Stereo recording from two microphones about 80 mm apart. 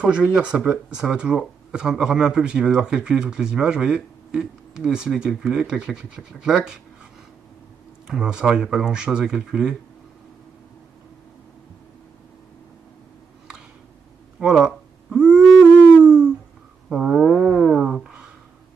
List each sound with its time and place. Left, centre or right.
0.0 s speech: centre
8.1 s speech: centre
14.4 s a sound: centre
16.9 s speech: centre